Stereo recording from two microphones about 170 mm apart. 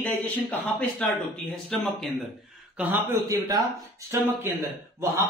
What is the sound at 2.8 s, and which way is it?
A man's voice, 15° right (ahead or behind).